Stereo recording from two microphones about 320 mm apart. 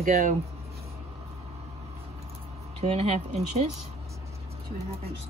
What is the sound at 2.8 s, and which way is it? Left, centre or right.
Speech, centre.